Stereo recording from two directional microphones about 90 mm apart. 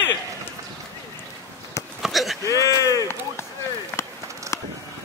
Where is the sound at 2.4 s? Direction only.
35° left (ahead or behind).